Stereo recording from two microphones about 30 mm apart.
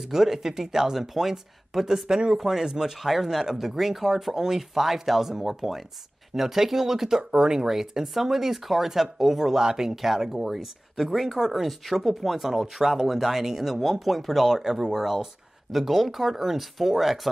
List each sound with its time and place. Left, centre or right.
0.1 s speech: centre
2.0 s speech: right
2.3 s speech: centre
9.6 s speech: centre